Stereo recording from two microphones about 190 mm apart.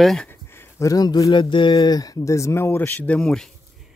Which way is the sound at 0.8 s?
20° left (ahead or behind).